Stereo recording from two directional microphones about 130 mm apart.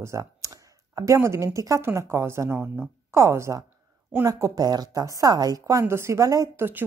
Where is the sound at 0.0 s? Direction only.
25° right (ahead or behind).